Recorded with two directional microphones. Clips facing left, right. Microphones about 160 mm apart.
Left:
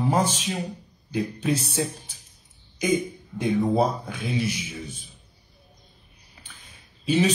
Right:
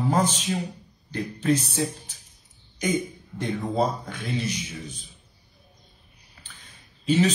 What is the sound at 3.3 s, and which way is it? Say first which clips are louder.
Speech: left 4 dB; 10° left (ahead or behind).